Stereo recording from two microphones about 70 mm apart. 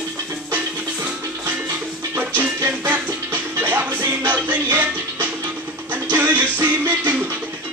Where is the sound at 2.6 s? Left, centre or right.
Right.